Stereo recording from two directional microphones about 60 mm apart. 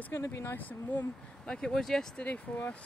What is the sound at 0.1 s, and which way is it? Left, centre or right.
Speech, left.